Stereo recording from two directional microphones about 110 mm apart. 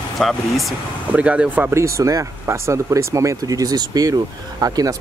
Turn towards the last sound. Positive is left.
turn(degrees=-35)  # may be behind; listen again after turning